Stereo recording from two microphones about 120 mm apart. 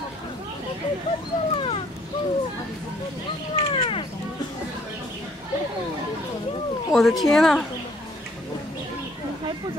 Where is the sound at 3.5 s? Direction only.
50° left (ahead or behind).